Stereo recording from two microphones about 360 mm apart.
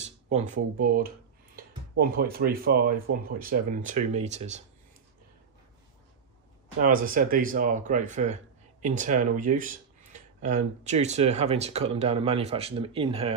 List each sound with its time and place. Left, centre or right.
0.0 s speech: centre
6.8 s speech: right